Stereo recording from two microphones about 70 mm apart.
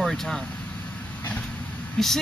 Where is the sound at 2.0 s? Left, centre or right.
Centre.